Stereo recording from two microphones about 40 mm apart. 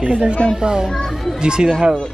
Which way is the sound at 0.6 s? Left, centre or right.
Centre.